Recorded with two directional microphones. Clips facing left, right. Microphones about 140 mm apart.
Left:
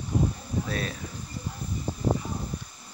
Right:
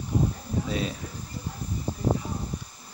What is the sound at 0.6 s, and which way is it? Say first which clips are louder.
Speech: right 4 dB; 15° right (ahead or behind).